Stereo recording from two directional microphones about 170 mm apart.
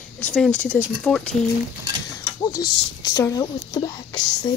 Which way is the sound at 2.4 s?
20° left (ahead or behind).